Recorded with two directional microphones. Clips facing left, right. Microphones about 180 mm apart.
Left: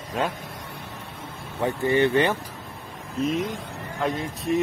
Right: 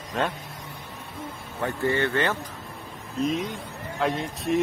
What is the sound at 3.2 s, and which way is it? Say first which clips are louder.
Speech: left 1 dB; centre (ahead or behind).